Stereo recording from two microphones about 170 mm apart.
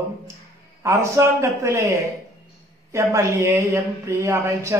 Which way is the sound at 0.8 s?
15° right (ahead or behind).